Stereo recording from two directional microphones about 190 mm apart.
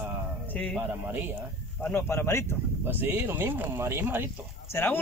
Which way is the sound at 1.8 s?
10° left (ahead or behind).